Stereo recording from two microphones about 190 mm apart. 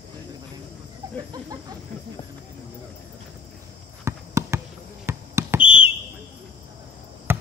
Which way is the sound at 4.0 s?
15° right (ahead or behind).